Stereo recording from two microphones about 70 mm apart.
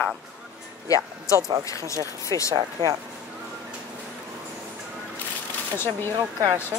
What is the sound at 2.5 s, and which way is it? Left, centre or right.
Speech, right.